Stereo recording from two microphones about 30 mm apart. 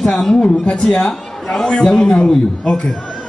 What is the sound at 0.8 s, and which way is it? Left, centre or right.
A man's voice, left.